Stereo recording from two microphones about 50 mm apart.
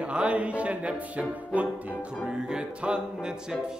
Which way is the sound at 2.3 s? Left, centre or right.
Centre.